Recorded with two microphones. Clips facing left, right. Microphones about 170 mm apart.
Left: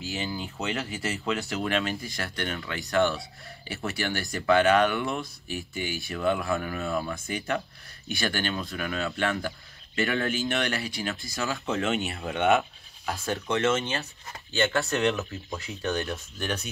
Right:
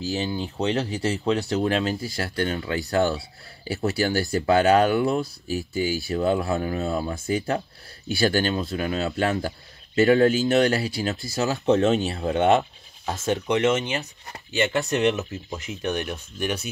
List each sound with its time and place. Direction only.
0.0 s speech: 35° right (ahead or behind); by 16.6 s 10° right (ahead or behind)